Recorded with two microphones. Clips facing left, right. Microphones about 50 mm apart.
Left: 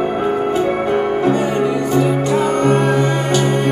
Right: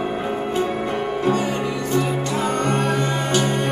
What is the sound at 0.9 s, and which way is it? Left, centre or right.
Music, left.